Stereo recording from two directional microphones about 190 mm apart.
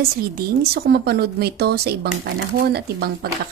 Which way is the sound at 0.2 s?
55° right (ahead or behind).